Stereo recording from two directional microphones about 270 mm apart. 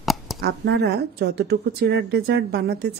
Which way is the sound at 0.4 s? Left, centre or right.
Right.